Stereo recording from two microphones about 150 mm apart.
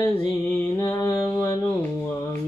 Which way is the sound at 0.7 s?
20° left (ahead or behind).